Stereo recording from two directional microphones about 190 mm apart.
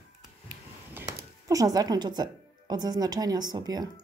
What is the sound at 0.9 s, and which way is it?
Speech, 15° right (ahead or behind).